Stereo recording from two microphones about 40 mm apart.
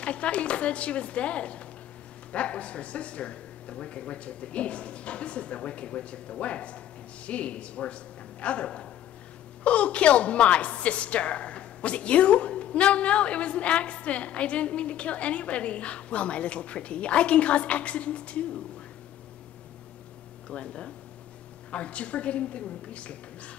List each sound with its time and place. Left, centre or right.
0.0 s a woman's voice: left
20.4 s a woman's voice: left